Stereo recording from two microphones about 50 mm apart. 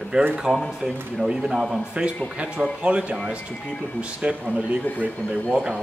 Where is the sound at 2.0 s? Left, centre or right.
Right.